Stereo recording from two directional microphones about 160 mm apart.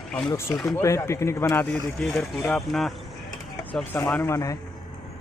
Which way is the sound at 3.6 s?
10° left (ahead or behind).